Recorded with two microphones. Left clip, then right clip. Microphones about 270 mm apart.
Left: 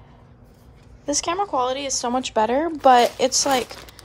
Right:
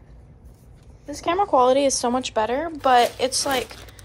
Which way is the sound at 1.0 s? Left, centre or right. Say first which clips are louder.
Even; centre.